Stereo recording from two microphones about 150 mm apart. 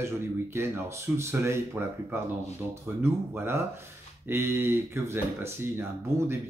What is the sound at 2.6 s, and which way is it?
Speech, 15° right (ahead or behind).